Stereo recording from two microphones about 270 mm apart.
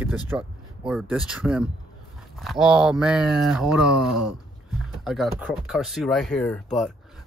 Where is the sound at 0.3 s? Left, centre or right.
Centre.